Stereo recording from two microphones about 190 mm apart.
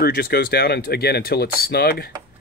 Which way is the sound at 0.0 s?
55° left (ahead or behind).